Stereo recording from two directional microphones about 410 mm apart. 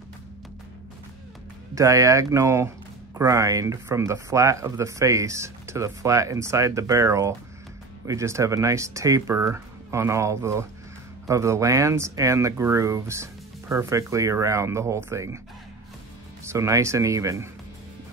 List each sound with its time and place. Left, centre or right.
1.8 s speech: centre
16.4 s speech: centre